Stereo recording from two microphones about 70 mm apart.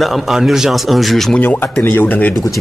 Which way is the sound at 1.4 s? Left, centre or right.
Left.